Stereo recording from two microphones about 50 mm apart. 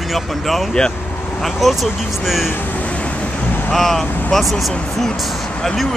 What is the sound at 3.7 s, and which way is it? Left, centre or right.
Speech, centre.